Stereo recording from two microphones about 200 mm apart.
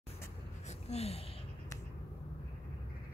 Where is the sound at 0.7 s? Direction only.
30° left (ahead or behind).